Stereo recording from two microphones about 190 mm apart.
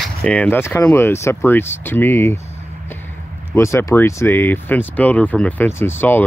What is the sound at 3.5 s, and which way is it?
Speech, 15° left (ahead or behind).